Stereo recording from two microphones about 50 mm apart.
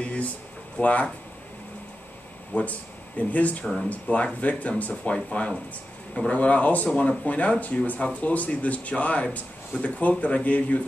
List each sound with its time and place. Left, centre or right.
0.0 s a sound: left
0.7 s speech: left
2.5 s speech: left